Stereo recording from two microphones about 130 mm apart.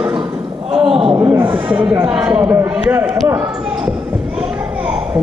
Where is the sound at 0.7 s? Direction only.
45° right (ahead or behind).